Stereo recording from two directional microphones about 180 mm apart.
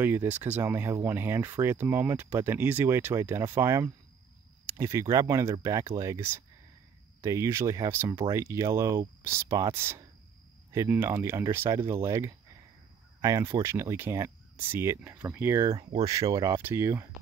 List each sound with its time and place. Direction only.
0.0 s speech: 10° right (ahead or behind)